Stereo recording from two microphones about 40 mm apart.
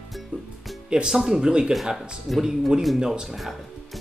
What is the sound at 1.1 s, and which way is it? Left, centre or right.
Speech, centre.